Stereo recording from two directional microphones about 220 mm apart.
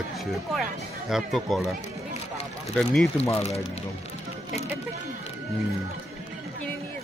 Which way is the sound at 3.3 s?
30° left (ahead or behind).